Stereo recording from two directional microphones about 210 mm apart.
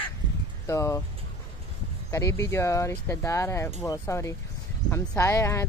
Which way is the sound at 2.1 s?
15° left (ahead or behind).